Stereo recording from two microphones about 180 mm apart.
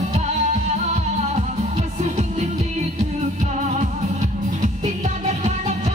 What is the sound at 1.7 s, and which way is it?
Music, 40° right (ahead or behind).